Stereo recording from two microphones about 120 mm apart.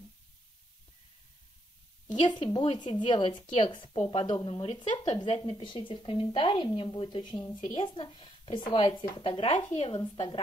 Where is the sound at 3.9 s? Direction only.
60° left (ahead or behind); by 5.0 s 40° left (ahead or behind).